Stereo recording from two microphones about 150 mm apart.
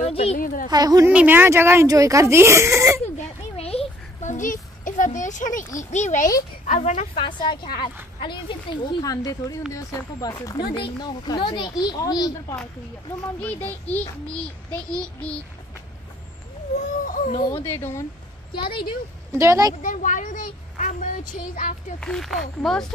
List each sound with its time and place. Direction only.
0.0 s a sound: 45° left (ahead or behind)
0.4 s a sound: 65° left (ahead or behind)
0.7 s a woman's voice: 25° right (ahead or behind)
1.0 s speech: 10° right (ahead or behind)
3.5 s a sound: 40° left (ahead or behind)
7.2 s a woman's voice: 30° left (ahead or behind)
13.4 s a child's voice: 10° left (ahead or behind)
17.0 s speech: 60° left (ahead or behind)
17.7 s a child's voice: 15° left (ahead or behind)
19.3 s a woman's voice: 20° right (ahead or behind)
19.8 s speech: 60° left (ahead or behind)
22.0 s speech: 5° left (ahead or behind)